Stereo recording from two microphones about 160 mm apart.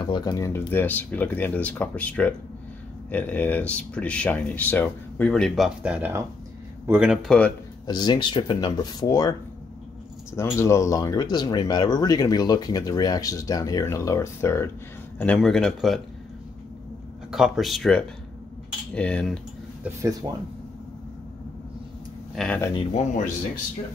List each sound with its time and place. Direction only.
0.0 s speech: 25° left (ahead or behind); by 5.7 s 5° left (ahead or behind)
5.8 s speech: 10° right (ahead or behind)
7.8 s speech: 25° left (ahead or behind)
10.3 s speech: 15° left (ahead or behind)
15.1 s speech: 5° left (ahead or behind)
17.3 s speech: centre (ahead or behind)
19.8 s speech: 20° right (ahead or behind)
22.3 s speech: 5° left (ahead or behind)